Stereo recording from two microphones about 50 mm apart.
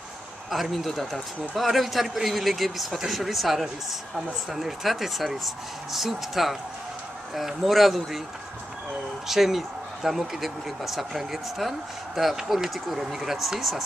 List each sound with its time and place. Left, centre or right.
0.5 s a man's voice: centre
9.3 s a man's voice: centre